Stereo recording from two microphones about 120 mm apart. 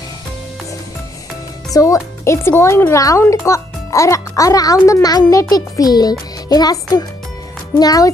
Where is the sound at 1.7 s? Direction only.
30° left (ahead or behind).